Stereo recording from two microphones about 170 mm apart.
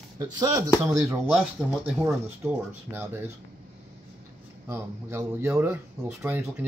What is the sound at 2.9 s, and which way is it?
Speech, 15° right (ahead or behind).